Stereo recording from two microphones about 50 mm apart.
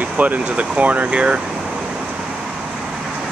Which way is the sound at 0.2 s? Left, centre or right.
Right.